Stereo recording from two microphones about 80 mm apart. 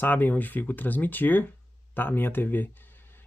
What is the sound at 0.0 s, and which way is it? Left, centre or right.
Speech, left.